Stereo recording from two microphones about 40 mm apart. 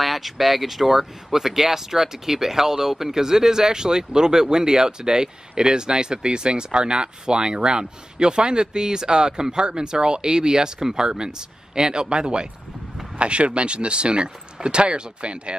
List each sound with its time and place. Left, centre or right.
0.0 s speech: centre; by 15.5 s right